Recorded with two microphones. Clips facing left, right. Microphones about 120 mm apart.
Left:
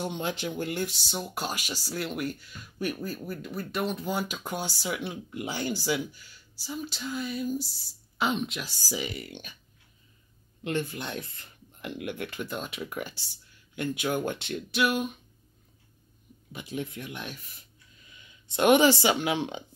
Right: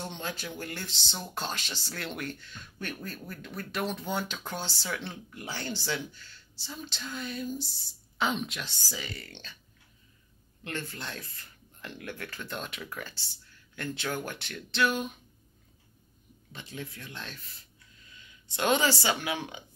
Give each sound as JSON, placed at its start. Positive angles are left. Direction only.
{"t": 0.0, "sound": "speech", "side_deg": 15}
{"t": 10.6, "sound": "speech", "side_deg": 15}
{"t": 12.4, "sound": "speech", "side_deg": 5}
{"t": 12.8, "sound": "speech", "side_deg": 15}
{"t": 16.5, "sound": "speech", "side_deg": 20}